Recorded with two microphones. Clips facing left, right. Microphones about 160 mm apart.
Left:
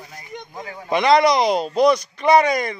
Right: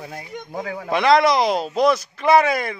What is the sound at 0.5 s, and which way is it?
Speech, 85° right.